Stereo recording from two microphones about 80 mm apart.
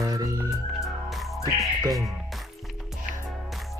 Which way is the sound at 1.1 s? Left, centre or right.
Centre.